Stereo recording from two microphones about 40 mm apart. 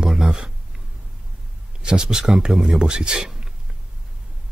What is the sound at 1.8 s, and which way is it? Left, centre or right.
Speech, centre.